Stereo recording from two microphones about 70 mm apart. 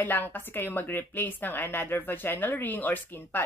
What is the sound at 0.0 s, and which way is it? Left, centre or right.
Speech, left.